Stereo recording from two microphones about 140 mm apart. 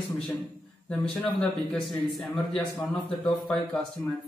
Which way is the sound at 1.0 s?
5° left (ahead or behind).